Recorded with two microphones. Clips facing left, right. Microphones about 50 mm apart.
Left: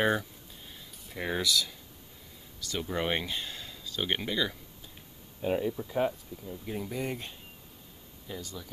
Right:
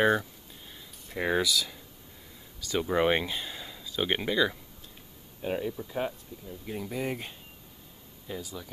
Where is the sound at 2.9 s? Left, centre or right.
Centre.